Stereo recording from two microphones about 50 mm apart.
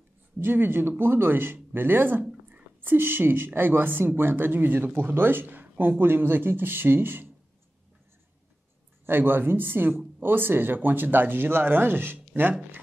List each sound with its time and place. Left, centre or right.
0.4 s speech: right
9.0 s speech: right